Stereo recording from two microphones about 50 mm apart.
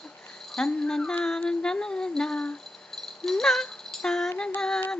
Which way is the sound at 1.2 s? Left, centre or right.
Centre.